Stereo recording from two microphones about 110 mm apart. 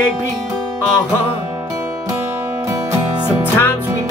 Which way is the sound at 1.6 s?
30° right (ahead or behind).